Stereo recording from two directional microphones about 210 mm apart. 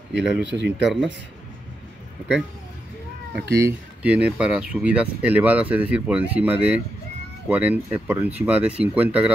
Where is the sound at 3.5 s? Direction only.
10° right (ahead or behind).